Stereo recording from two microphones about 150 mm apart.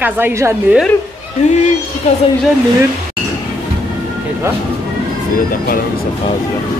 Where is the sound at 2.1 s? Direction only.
50° left (ahead or behind).